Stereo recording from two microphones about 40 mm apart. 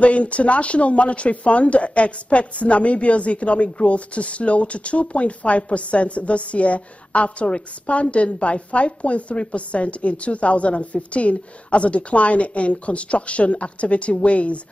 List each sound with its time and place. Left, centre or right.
0.0 s speech: left